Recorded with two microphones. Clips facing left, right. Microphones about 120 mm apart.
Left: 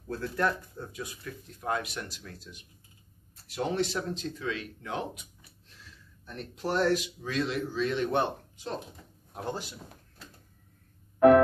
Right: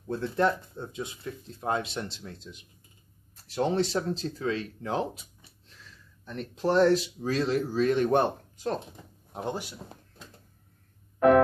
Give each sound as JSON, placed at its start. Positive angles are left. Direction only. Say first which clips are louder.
{"t": 0.1, "sound": "speech", "louder": "right 4 dB", "side_deg": -25}
{"t": 9.3, "sound": "speech", "louder": "right 2 dB", "side_deg": -20}